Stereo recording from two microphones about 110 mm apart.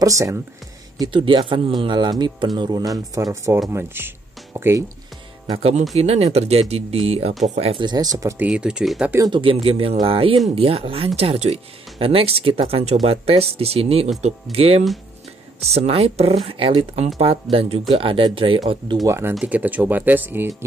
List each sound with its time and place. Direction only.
0.0 s speech: 30° right (ahead or behind)
1.1 s speech: 50° right (ahead or behind); by 3.6 s 30° right (ahead or behind)
3.7 s speech: 20° right (ahead or behind)
5.5 s speech: 65° right (ahead or behind)
7.4 s speech: 90° right
7.8 s speech: 40° right (ahead or behind)
8.4 s speech: 10° right (ahead or behind)
9.3 s speech: 55° right (ahead or behind)
15.6 s speech: 70° right (ahead or behind)
16.4 s speech: 55° right (ahead or behind)
19.0 s speech: 25° right (ahead or behind)